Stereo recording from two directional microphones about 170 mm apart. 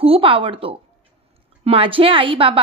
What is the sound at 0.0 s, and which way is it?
A woman's voice, 30° right (ahead or behind).